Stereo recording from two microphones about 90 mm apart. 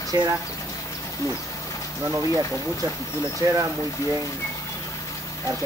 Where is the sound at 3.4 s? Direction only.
45° right (ahead or behind).